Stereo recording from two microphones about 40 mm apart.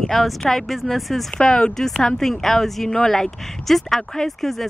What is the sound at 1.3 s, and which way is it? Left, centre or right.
Speech, centre.